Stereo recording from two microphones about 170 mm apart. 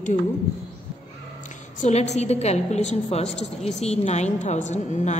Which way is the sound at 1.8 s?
40° left (ahead or behind).